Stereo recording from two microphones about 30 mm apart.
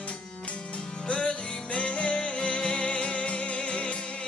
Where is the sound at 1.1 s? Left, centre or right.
Left.